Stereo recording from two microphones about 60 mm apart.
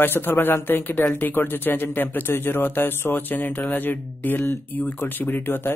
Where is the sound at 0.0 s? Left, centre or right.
Left.